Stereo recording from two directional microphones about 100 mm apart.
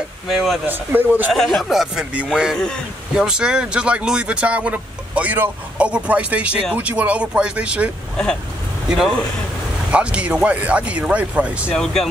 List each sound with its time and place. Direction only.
0.3 s speech: centre (ahead or behind)
0.7 s speech: 20° right (ahead or behind)
1.3 s speech: centre (ahead or behind)
11.7 s speech: 5° left (ahead or behind)